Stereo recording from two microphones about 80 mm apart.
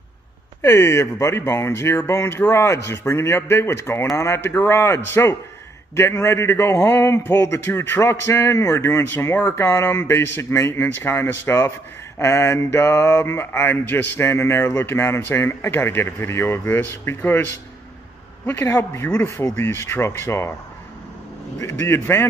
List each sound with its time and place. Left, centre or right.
0.6 s speech: left
12.2 s mantra: left
18.6 s speech: left
21.5 s speech: left